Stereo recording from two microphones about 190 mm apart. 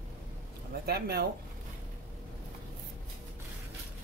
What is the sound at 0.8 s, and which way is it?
Speech, 55° right (ahead or behind).